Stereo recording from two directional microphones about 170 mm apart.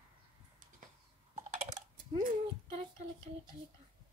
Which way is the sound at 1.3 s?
40° right (ahead or behind).